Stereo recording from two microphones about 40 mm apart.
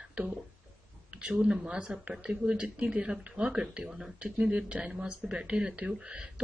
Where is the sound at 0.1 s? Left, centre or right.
Right.